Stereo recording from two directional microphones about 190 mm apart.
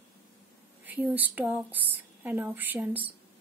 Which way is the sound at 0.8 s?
10° right (ahead or behind).